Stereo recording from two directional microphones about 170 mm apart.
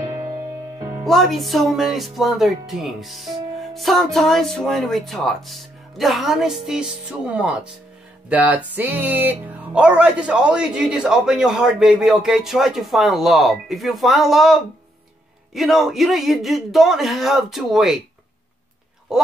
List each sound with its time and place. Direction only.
0.1 s music: 30° right (ahead or behind)
0.4 s music: 20° right (ahead or behind)
1.0 s speech: centre (ahead or behind)
19.1 s speech: 5° right (ahead or behind)